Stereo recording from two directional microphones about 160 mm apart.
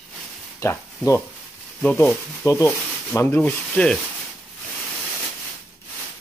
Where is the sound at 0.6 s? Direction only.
20° left (ahead or behind).